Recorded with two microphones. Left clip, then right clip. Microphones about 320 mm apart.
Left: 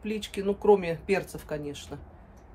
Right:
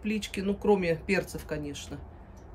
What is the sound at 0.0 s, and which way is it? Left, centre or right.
Speech, centre.